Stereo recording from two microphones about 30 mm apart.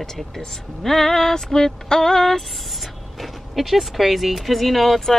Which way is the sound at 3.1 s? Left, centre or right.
Centre.